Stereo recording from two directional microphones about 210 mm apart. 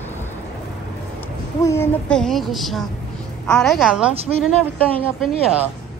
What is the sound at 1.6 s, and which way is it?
Speech, 10° left (ahead or behind).